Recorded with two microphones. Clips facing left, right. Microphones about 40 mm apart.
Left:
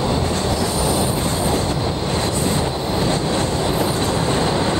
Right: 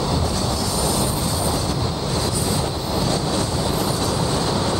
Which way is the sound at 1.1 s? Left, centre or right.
Left.